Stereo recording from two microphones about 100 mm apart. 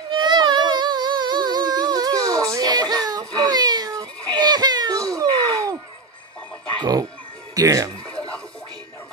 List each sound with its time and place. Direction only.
0.1 s music: 50° right (ahead or behind)
5.1 s a sound: 35° right (ahead or behind)
6.8 s speech: 40° right (ahead or behind)